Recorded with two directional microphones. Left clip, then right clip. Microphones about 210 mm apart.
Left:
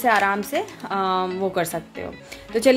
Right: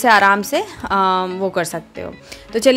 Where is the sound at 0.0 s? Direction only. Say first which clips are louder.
Right 7 dB; 30° right (ahead or behind).